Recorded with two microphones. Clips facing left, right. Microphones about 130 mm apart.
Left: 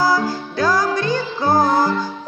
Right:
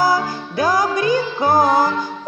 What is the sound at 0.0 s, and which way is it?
Music, 15° right (ahead or behind).